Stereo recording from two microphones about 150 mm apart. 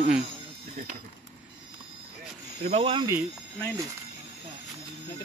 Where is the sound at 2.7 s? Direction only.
35° right (ahead or behind).